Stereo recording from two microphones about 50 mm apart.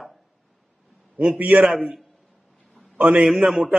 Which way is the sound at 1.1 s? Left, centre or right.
Right.